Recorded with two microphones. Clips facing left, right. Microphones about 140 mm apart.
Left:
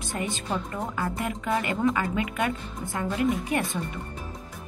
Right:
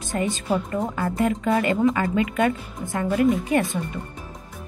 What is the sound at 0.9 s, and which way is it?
Speech, 40° right (ahead or behind).